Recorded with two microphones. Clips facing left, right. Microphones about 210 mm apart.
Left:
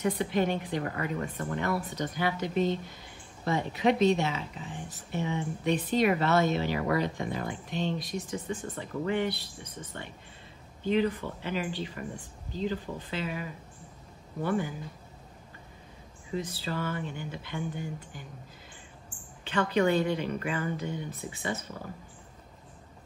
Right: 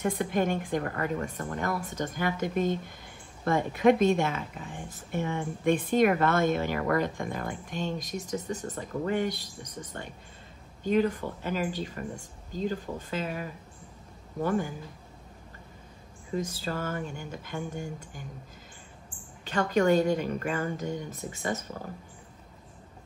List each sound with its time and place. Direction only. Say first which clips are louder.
0.0 s a woman's voice: even; 50° right (ahead or behind)
16.3 s a woman's voice: right 1 dB; 45° right (ahead or behind)
19.4 s a woman's voice: right 1 dB; 45° right (ahead or behind)